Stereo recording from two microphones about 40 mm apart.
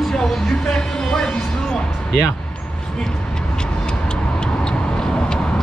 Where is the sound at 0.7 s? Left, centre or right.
Centre.